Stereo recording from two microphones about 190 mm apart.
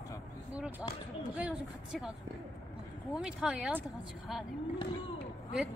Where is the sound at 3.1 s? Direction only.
5° right (ahead or behind).